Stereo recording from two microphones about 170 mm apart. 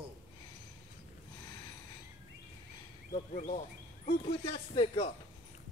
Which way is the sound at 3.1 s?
55° left (ahead or behind).